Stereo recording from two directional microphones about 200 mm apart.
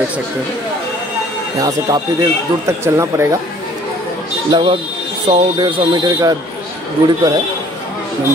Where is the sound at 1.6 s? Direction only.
15° right (ahead or behind).